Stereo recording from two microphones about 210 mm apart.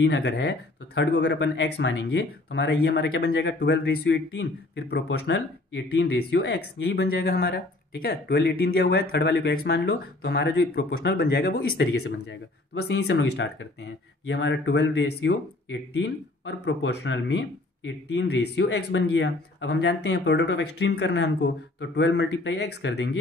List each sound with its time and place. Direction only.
0.0 s speech: 55° left (ahead or behind)